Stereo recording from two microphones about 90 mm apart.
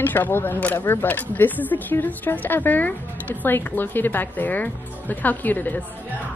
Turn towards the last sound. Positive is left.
turn(degrees=20)  # may be behind; listen again after turning